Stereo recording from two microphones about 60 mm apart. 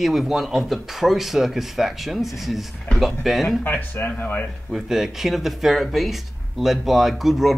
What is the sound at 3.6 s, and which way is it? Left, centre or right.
Speech, left.